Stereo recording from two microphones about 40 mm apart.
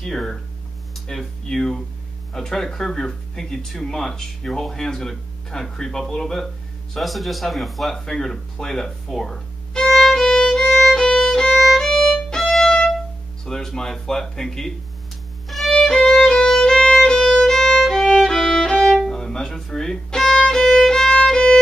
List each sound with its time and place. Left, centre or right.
0.0 s a man's voice: centre
10.3 s violin: centre
13.5 s speech: centre
15.7 s music: centre
16.0 s violin: centre
16.4 s violin: centre